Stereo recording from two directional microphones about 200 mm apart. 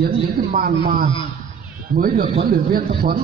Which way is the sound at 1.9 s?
45° right (ahead or behind).